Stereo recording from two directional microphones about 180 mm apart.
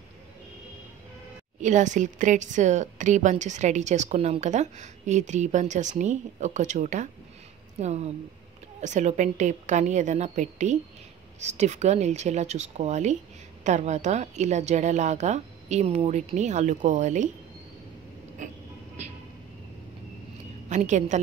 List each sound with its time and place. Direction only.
1.6 s a woman's voice: 40° right (ahead or behind)
20.6 s a woman's voice: 40° right (ahead or behind)